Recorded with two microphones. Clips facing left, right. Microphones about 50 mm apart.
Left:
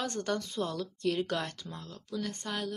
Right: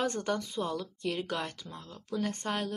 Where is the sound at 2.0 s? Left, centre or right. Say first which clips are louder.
Right 4 dB; right.